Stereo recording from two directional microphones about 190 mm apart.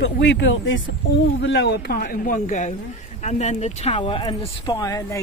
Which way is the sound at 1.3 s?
65° left (ahead or behind).